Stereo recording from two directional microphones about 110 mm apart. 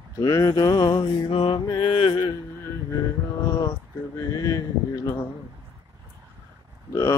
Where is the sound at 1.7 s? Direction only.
50° left (ahead or behind).